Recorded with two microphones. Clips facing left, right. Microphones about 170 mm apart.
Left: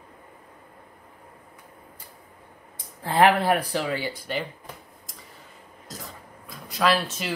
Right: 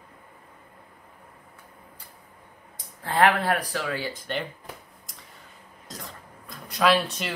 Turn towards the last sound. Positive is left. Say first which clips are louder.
# right 1 dB
turn(degrees=0)  # may be behind; listen again after turning